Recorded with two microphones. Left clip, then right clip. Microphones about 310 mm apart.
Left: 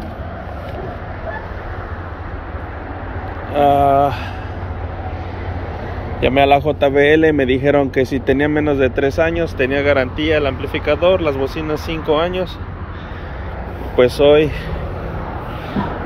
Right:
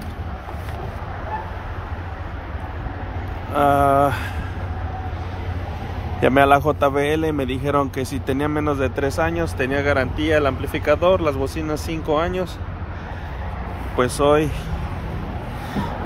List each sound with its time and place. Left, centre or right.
3.5 s speech: centre
6.2 s speech: centre
13.9 s speech: centre